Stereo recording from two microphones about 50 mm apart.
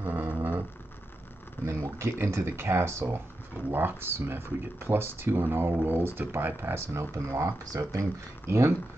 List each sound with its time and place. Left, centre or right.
0.0 s a sound: right
1.7 s speech: right
3.7 s speech: right
8.5 s speech: right